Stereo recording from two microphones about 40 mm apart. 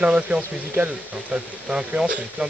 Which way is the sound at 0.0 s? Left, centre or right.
Right.